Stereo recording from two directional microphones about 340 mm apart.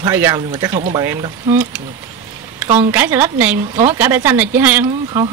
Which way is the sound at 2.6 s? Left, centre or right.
Centre.